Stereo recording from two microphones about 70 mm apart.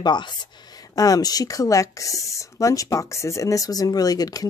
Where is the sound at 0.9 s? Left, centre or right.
Left.